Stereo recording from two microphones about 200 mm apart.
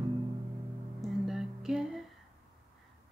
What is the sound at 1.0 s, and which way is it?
Music, centre (ahead or behind).